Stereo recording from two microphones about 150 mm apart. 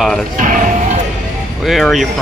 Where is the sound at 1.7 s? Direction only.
Centre (ahead or behind).